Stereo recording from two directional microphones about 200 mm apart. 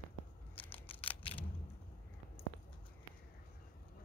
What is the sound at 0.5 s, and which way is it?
Scissors, 10° left (ahead or behind).